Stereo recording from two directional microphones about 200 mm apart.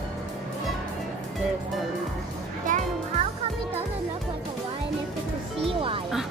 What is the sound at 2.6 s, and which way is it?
Music, 40° right (ahead or behind).